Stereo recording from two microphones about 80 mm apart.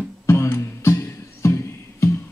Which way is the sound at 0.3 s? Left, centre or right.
Left.